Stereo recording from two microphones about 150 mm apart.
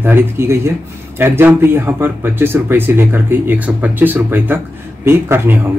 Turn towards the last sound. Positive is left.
turn(degrees=-15)  # may be behind; listen again after turning